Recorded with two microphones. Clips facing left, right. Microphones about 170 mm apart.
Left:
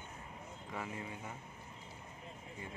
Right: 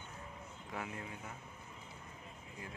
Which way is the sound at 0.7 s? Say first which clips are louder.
Left 1 dB; centre (ahead or behind).